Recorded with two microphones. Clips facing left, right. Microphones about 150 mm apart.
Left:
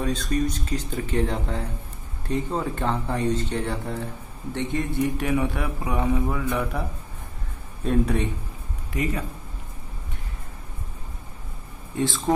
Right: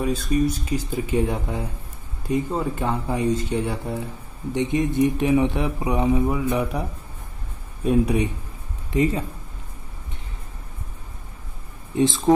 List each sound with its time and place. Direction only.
0.0 s speech: 10° right (ahead or behind)
8.9 s speech: 25° right (ahead or behind)
11.9 s speech: 20° right (ahead or behind)